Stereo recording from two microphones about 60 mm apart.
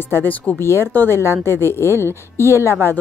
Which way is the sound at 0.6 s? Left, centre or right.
Left.